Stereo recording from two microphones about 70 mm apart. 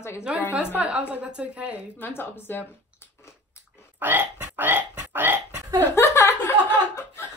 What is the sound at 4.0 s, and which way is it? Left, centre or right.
Hiccup, right.